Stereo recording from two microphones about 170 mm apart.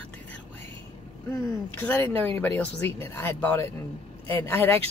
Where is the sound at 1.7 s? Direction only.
15° left (ahead or behind).